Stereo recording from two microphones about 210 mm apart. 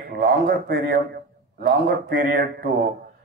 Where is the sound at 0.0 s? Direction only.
45° right (ahead or behind).